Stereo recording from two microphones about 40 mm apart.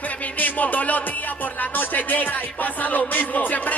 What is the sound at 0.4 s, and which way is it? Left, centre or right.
Music, left.